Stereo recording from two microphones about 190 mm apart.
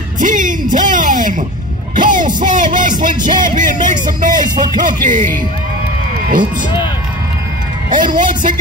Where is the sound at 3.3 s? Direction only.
45° right (ahead or behind).